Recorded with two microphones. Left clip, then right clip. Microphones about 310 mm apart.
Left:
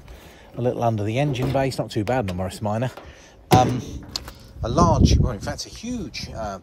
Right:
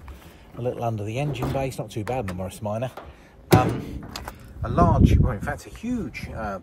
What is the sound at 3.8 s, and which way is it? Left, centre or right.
Speech, centre.